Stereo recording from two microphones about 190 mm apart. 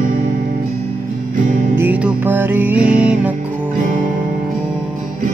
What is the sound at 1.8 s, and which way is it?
Music, 5° right (ahead or behind).